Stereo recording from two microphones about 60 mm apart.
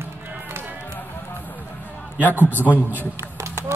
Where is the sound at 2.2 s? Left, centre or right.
Left.